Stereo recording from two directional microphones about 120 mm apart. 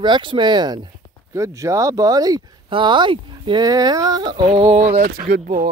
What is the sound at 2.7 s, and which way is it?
Speech, 45° right (ahead or behind).